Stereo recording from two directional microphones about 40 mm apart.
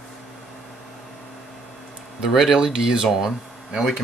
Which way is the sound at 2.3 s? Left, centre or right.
Centre.